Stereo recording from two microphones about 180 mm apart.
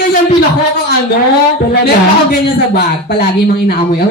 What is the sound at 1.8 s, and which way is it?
Speech, 65° left (ahead or behind).